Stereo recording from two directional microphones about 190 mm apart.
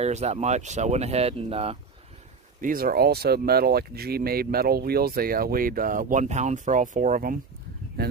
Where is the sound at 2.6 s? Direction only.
50° right (ahead or behind).